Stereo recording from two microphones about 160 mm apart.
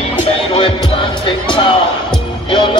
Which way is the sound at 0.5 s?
30° left (ahead or behind).